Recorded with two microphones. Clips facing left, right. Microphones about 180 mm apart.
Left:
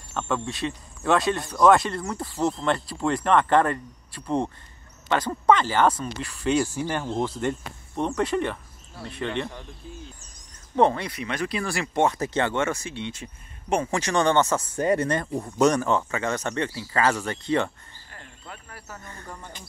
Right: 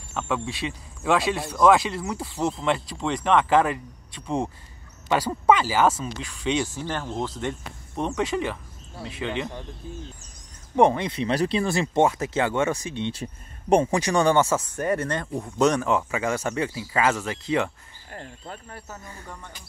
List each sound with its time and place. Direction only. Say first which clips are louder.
0.1 s speech: even; centre (ahead or behind); by 7.3 s 15° left (ahead or behind)
7.3 s speech: left 3 dB; centre (ahead or behind)
10.8 s speech: right 2 dB; 15° right (ahead or behind)
12.1 s speech: even; 5° right (ahead or behind)
13.1 s speech: right 5 dB; 35° right (ahead or behind)
13.8 s speech: right 2 dB; 15° right (ahead or behind)
14.8 s speech: left 3 dB; 15° left (ahead or behind); by 17.6 s 5° right (ahead or behind)
18.1 s speech: right 6 dB; 35° right (ahead or behind)
19.0 s speech: even; 10° right (ahead or behind)